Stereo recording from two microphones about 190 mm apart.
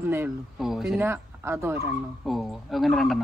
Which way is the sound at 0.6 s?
Centre (ahead or behind).